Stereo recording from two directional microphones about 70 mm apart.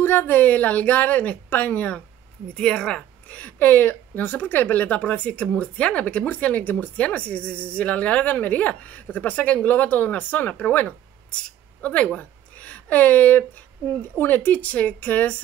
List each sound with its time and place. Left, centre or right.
0.0 s a woman's voice: left; by 3.1 s centre
3.3 s a woman's voice: left